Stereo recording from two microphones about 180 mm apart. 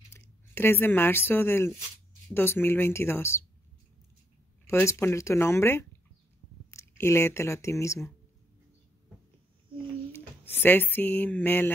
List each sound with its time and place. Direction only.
0.6 s speech: 10° left (ahead or behind)
4.6 s speech: 15° left (ahead or behind)
10.4 s speech: 10° left (ahead or behind)